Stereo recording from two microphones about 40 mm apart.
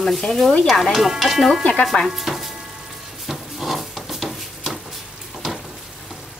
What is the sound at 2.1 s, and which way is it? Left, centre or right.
Music, centre.